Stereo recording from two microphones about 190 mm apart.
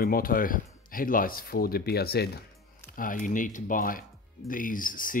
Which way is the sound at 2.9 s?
45° left (ahead or behind).